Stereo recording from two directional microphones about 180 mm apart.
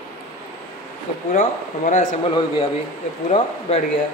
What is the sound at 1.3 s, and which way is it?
Speech, 45° left (ahead or behind).